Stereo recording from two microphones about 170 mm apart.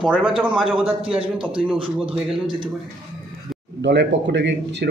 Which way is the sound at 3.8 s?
90° right.